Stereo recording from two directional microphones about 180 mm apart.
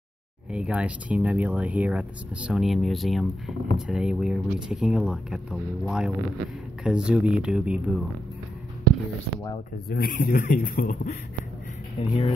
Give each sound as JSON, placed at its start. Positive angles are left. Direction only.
{"t": 0.5, "sound": "speech", "side_deg": -5}
{"t": 9.8, "sound": "speech", "side_deg": 55}
{"t": 12.0, "sound": "speech", "side_deg": 35}